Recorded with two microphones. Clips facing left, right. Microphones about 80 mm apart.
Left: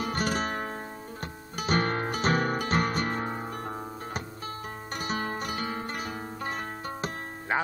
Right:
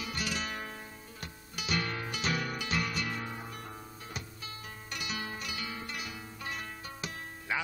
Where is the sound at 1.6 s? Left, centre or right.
Left.